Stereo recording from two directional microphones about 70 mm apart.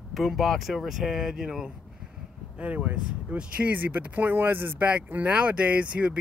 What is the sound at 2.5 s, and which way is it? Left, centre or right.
Speech, right.